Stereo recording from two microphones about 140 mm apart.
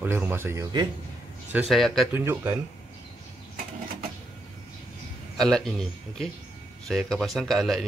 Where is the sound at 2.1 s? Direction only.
15° right (ahead or behind).